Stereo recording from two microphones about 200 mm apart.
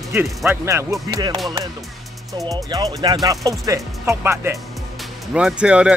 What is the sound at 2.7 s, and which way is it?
Speech, 15° right (ahead or behind).